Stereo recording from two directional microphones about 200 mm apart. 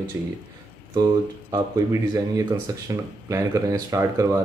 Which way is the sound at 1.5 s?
15° right (ahead or behind).